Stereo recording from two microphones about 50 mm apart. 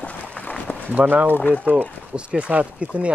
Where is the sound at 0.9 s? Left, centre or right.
Right.